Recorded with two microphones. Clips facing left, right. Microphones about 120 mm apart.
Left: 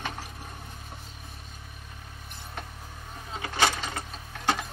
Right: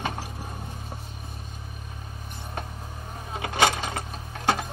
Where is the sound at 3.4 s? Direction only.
55° right (ahead or behind).